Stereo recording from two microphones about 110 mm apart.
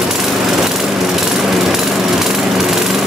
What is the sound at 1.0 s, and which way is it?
Jackhammer, centre (ahead or behind).